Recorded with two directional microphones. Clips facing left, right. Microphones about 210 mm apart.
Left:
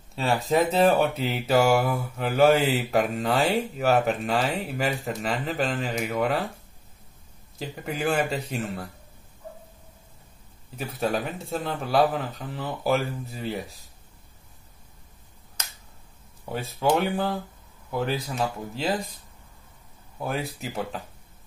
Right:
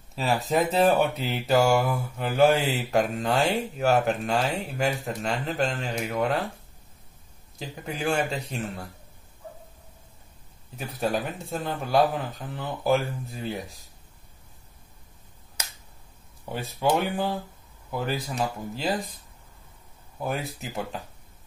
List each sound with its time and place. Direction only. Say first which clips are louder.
0.1 s speech: left 1 dB; centre (ahead or behind)
7.5 s speech: left 2 dB; centre (ahead or behind)
10.8 s speech: left 1 dB; centre (ahead or behind)
16.5 s speech: left 1 dB; 5° right (ahead or behind)
20.2 s speech: left 1 dB; centre (ahead or behind)